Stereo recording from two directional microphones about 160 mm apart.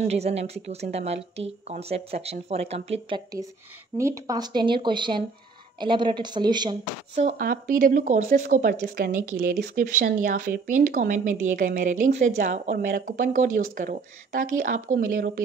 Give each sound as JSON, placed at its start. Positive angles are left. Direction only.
{"t": 0.1, "sound": "speech", "side_deg": -40}
{"t": 4.0, "sound": "speech", "side_deg": -20}
{"t": 7.2, "sound": "speech", "side_deg": -55}
{"t": 8.9, "sound": "a woman's voice", "side_deg": -70}